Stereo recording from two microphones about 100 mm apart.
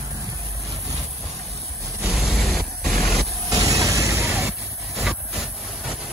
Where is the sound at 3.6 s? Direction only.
35° right (ahead or behind).